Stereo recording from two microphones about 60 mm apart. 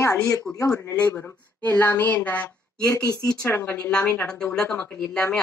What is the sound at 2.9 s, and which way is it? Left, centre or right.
Speech, left.